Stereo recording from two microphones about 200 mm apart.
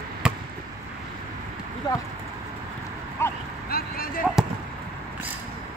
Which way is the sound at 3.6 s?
50° left (ahead or behind).